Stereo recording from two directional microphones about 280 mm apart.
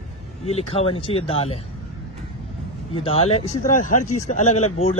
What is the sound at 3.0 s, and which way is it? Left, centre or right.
Speech, left.